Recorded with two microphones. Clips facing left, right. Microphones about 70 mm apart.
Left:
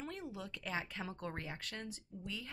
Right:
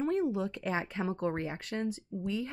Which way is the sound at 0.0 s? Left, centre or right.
Right.